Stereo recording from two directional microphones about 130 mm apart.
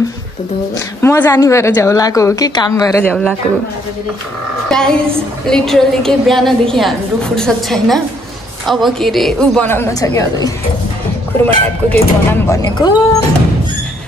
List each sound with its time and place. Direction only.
0.7 s a woman's voice: 20° left (ahead or behind)
3.0 s speech: 10° left (ahead or behind)
4.6 s a woman's voice: 5° left (ahead or behind)
9.7 s a woman's voice: 20° left (ahead or behind)
11.4 s speech: 15° left (ahead or behind)
12.6 s speech: 30° left (ahead or behind)